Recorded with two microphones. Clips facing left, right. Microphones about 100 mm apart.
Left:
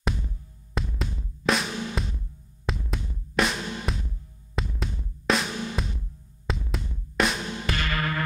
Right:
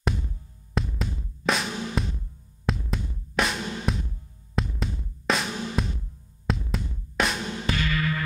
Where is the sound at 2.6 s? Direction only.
Centre (ahead or behind).